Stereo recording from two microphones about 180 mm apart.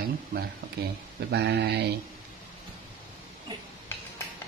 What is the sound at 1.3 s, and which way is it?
Speech, 70° right (ahead or behind).